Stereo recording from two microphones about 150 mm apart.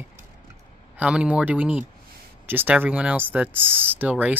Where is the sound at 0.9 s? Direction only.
10° right (ahead or behind).